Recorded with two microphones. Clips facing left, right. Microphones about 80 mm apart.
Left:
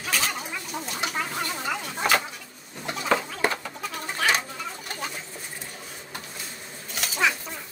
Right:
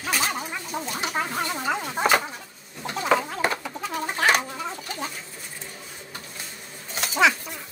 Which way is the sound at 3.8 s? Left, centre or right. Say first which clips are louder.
Right 4 dB; right.